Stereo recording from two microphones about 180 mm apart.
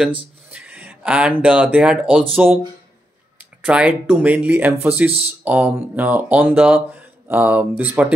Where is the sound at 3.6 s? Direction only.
5° right (ahead or behind).